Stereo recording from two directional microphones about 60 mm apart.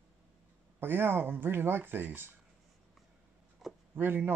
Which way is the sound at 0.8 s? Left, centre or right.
Right.